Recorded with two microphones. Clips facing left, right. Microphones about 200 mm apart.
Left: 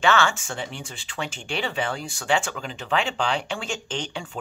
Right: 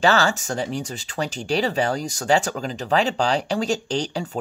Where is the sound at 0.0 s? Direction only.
40° right (ahead or behind).